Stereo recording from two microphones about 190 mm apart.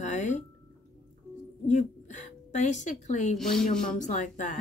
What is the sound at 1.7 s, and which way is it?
A woman's voice, 40° left (ahead or behind).